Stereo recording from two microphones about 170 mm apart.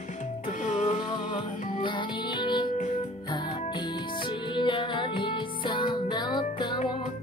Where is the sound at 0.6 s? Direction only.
45° left (ahead or behind).